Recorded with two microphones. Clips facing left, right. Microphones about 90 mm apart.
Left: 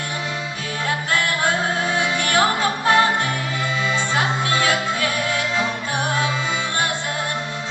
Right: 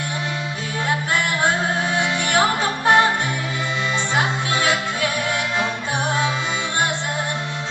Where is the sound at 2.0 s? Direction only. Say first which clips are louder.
Even; 20° right (ahead or behind).